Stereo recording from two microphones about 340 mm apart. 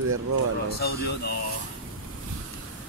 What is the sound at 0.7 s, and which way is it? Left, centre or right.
Speech, left.